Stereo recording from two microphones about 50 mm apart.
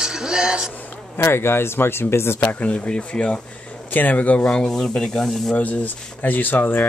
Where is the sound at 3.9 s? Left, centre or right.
Left.